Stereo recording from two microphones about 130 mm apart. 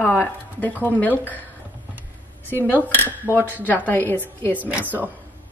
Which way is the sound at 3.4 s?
15° right (ahead or behind).